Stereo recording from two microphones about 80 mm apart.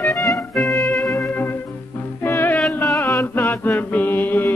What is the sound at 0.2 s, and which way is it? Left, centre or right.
Music, centre.